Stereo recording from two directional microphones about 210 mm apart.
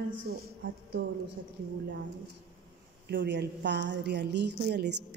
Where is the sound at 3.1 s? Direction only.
55° right (ahead or behind).